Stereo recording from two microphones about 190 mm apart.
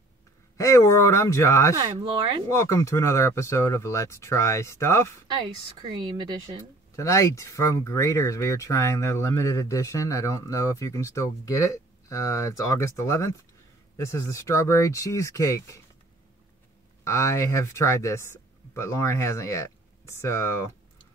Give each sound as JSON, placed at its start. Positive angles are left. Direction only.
{"t": 0.6, "sound": "speech", "side_deg": 15}
{"t": 1.8, "sound": "speech", "side_deg": -25}
{"t": 2.5, "sound": "speech", "side_deg": 15}
{"t": 5.8, "sound": "speech", "side_deg": -25}
{"t": 7.0, "sound": "speech", "side_deg": 15}
{"t": 17.0, "sound": "speech", "side_deg": 15}